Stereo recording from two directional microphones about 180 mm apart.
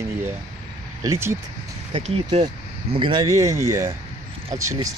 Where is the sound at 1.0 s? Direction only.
15° right (ahead or behind).